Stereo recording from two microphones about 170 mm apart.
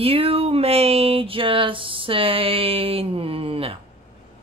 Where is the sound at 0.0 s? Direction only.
35° right (ahead or behind).